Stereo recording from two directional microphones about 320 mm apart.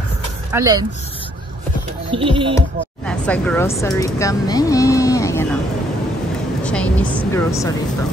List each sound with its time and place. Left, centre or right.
0.5 s speech: centre
2.0 s speech: centre
3.1 s speech: centre
6.6 s a woman's voice: centre